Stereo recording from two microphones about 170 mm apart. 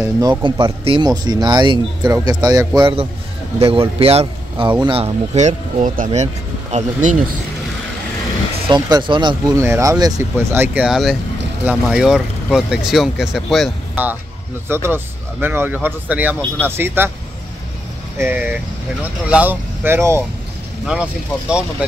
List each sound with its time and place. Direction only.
0.0 s speech: 25° right (ahead or behind); by 7.2 s 45° right (ahead or behind)
8.6 s speech: 25° right (ahead or behind)
9.6 s speech: 15° right (ahead or behind)
14.7 s speech: 15° right (ahead or behind)
18.1 s speech: 10° right (ahead or behind)
20.8 s speech: 5° right (ahead or behind)